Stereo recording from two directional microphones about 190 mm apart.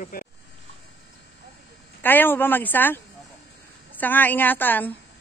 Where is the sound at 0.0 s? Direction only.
50° left (ahead or behind).